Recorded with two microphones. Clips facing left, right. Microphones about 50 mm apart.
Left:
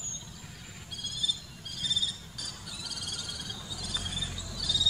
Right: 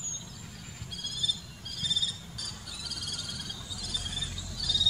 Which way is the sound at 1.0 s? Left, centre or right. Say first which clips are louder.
Even; centre.